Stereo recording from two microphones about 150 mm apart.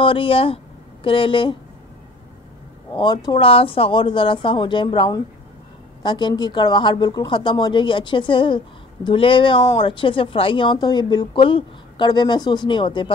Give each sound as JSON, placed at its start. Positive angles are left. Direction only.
{"t": 0.0, "sound": "speech", "side_deg": 35}
{"t": 2.9, "sound": "speech", "side_deg": 30}